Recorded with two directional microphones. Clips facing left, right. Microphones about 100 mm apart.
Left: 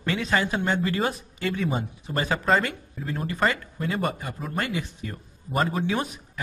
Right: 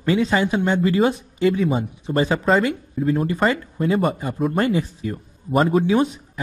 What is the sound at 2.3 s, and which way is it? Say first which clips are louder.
Speech: right 2 dB; centre (ahead or behind).